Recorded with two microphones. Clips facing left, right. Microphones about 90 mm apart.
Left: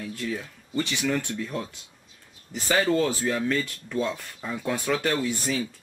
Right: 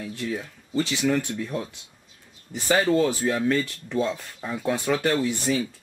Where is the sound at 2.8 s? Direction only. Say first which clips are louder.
Right 2 dB; 5° right (ahead or behind).